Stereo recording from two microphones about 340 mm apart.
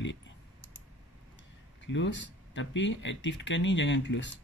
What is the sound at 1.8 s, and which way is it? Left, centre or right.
Speech, left.